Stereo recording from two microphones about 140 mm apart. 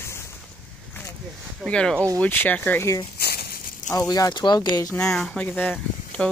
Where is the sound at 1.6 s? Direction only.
5° left (ahead or behind).